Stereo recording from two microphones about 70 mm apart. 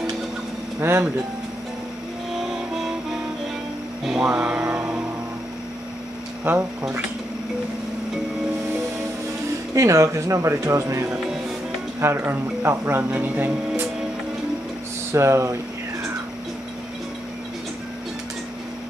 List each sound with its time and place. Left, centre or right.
0.7 s speech: right
2.3 s music: centre
4.0 s music: centre
4.3 s speech: right
4.7 s music: centre
6.5 s speech: right
9.8 s speech: right
12.0 s speech: right
15.1 s speech: right